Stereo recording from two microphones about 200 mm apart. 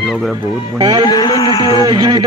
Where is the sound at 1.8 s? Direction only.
20° right (ahead or behind).